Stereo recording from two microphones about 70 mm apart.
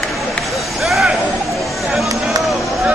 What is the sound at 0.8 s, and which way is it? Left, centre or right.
Vehicle, centre.